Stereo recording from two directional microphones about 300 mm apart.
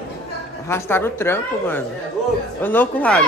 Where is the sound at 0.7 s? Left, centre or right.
Centre.